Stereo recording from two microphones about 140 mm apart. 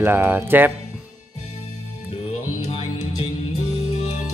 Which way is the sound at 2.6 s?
50° left (ahead or behind).